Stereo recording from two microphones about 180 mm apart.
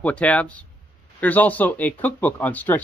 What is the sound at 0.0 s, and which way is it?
Speech, 5° left (ahead or behind).